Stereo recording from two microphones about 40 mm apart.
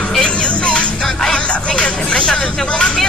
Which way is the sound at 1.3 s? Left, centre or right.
Left.